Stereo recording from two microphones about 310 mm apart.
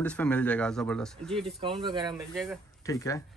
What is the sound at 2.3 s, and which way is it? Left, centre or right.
Speech, centre.